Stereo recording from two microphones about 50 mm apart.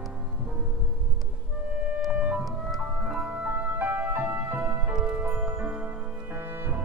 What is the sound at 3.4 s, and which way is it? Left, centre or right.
Music, right.